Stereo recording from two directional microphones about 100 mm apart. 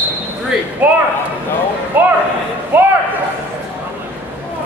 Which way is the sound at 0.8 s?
15° right (ahead or behind).